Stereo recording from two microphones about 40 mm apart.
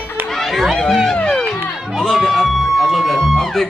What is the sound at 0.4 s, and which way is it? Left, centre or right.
Chatter, centre.